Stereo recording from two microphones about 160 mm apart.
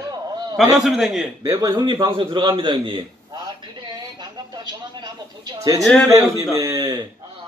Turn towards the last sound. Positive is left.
turn(degrees=-25)  # may be behind; listen again after turning